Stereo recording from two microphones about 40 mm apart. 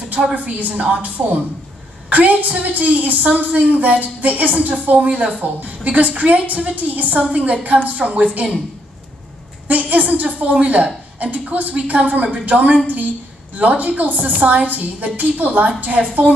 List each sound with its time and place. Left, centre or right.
0.1 s a woman's voice: right
7.2 s a woman's voice: right
9.7 s a woman's voice: right